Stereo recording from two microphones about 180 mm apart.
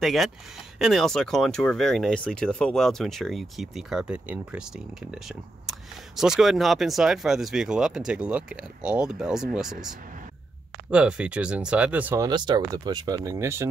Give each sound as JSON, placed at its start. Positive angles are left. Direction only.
{"t": 0.0, "sound": "speech", "side_deg": 0}
{"t": 10.9, "sound": "speech", "side_deg": -5}
{"t": 12.3, "sound": "speech", "side_deg": -25}